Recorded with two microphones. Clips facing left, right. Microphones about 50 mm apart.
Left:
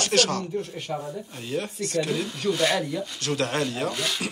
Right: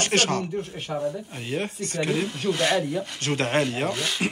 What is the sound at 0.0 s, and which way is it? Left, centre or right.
Speech, right.